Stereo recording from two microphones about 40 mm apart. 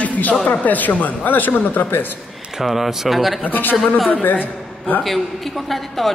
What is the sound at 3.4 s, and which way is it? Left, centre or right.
A man's voice, left.